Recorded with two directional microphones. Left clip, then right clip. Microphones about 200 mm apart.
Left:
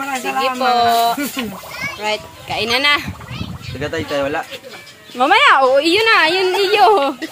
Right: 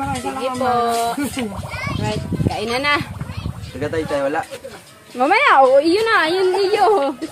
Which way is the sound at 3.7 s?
40° left (ahead or behind).